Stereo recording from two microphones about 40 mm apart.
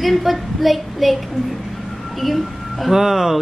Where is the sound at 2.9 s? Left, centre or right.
Centre.